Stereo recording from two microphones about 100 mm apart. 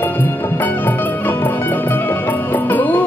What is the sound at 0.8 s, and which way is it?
Music, 20° left (ahead or behind).